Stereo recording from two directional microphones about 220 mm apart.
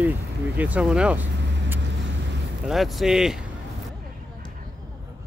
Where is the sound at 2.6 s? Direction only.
Centre (ahead or behind).